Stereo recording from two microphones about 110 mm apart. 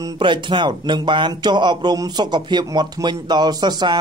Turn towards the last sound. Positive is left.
turn(degrees=-40)  # may be behind; listen again after turning